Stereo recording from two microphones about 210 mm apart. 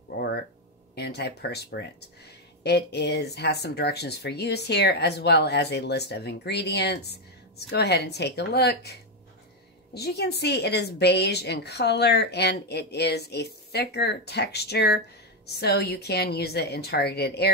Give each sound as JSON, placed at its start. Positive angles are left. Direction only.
{"t": 0.9, "sound": "speech", "side_deg": 50}
{"t": 9.9, "sound": "speech", "side_deg": 50}